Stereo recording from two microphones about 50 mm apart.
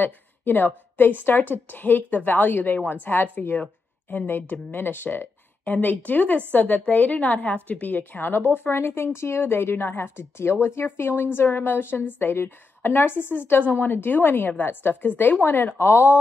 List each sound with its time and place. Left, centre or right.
0.0 s a woman's voice: left
3.3 s a woman's voice: left
15.8 s speech: left